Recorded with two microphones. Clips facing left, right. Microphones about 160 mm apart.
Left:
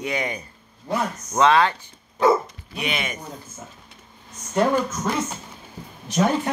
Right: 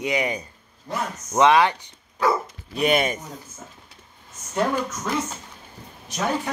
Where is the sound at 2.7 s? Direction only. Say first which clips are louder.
Right 7 dB; 40° right (ahead or behind).